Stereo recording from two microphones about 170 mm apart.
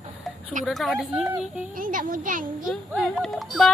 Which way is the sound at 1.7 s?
55° right (ahead or behind).